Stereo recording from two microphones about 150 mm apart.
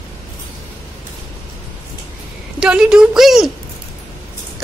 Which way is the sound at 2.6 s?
5° right (ahead or behind).